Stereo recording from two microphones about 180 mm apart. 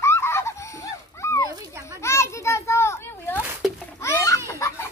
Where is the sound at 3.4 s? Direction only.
5° right (ahead or behind).